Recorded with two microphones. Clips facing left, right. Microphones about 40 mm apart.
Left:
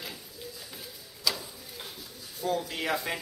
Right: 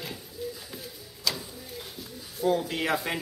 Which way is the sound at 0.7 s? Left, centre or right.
Centre.